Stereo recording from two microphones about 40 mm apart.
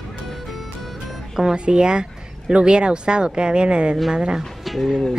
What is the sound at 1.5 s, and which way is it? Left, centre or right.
Speech, right.